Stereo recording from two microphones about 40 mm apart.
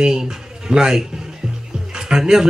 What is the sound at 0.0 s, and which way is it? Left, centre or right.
A man's voice, centre.